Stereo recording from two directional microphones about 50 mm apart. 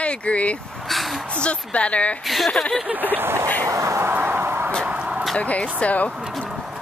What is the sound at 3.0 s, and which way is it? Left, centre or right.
Speech, right.